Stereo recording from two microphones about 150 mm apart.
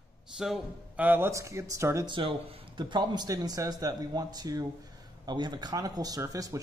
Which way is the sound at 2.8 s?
30° right (ahead or behind).